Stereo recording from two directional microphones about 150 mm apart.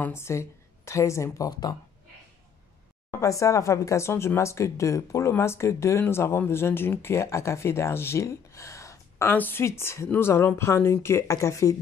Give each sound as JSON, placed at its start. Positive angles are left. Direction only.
{"t": 0.0, "sound": "speech", "side_deg": 15}
{"t": 3.1, "sound": "speech", "side_deg": 20}